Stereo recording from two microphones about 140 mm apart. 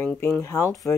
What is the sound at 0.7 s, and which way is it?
Speech, centre (ahead or behind).